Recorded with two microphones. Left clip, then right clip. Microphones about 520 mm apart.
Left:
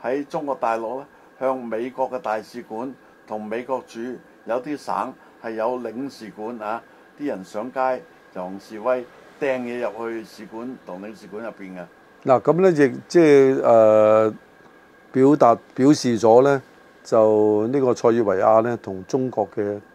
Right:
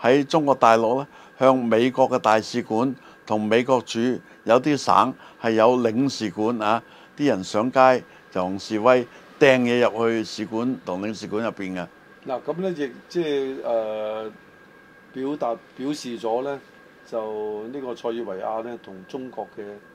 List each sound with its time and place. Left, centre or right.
0.0 s a man's voice: right
12.3 s speech: left